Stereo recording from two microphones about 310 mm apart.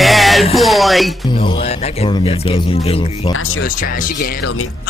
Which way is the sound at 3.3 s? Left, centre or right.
Left.